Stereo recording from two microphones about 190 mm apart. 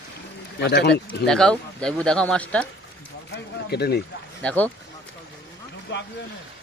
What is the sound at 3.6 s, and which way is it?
Speech, 60° left (ahead or behind).